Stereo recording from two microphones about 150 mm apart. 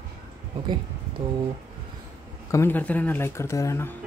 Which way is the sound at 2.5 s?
15° left (ahead or behind).